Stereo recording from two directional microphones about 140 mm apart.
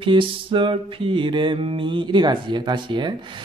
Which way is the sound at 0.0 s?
35° right (ahead or behind).